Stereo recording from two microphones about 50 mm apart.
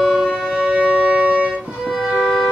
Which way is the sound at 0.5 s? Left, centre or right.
Centre.